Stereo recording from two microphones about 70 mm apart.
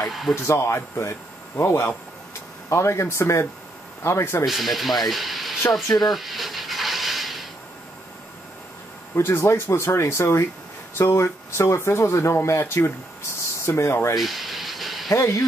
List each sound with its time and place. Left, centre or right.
0.1 s speech: centre
0.4 s speech: left
4.5 s speech: centre
6.0 s a sound: centre
9.1 s speech: left
14.1 s a sound: centre
15.1 s speech: left